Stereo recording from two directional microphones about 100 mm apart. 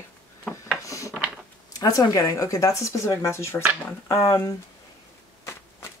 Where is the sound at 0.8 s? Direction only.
30° left (ahead or behind).